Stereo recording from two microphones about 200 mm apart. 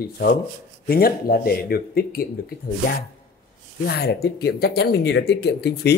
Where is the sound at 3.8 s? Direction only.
50° left (ahead or behind).